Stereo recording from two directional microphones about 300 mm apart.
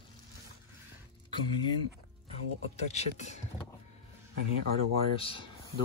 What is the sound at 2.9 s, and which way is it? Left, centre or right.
Speech, left.